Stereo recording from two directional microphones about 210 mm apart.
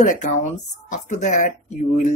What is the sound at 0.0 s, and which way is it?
Speech, 35° left (ahead or behind).